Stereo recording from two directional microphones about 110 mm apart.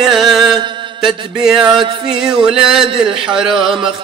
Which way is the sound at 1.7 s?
50° right (ahead or behind).